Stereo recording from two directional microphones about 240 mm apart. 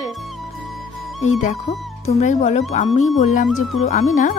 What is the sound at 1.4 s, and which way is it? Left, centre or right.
Speech, left.